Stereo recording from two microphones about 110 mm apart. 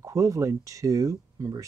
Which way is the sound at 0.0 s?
30° right (ahead or behind).